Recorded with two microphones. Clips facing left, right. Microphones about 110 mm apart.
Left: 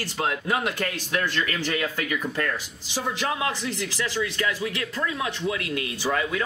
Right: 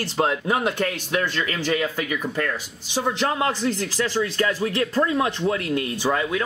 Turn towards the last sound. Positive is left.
turn(degrees=-35)  # may be behind; listen again after turning